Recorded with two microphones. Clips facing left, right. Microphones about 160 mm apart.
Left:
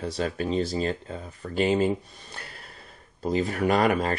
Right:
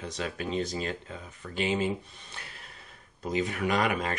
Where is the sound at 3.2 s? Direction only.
35° left (ahead or behind).